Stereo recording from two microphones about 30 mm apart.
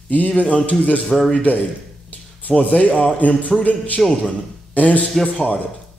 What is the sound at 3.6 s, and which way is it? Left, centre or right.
Speech, left.